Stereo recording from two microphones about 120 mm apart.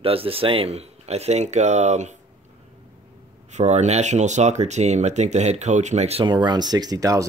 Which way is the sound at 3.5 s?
70° right (ahead or behind).